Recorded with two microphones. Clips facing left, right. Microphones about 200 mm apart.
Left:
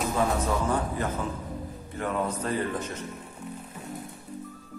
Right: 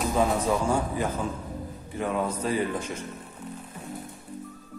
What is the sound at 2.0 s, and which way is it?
A man's voice, 10° right (ahead or behind).